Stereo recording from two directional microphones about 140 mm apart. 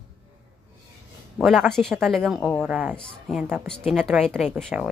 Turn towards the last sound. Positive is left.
turn(degrees=-10)  # may be behind; listen again after turning